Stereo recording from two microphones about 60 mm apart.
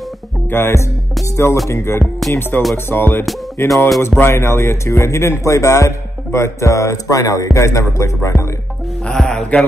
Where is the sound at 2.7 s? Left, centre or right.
Left.